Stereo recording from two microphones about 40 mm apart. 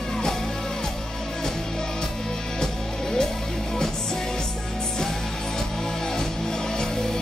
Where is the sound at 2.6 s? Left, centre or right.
Centre.